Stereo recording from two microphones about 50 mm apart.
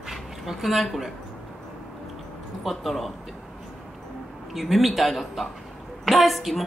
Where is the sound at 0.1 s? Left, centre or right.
Centre.